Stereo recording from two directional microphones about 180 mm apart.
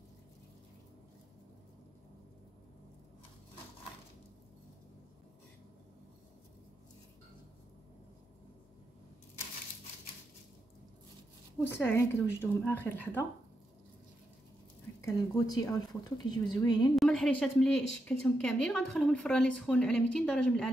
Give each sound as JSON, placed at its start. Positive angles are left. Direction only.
{"t": 11.8, "sound": "speech", "side_deg": 10}
{"t": 15.0, "sound": "speech", "side_deg": 15}
{"t": 16.9, "sound": "speech", "side_deg": 0}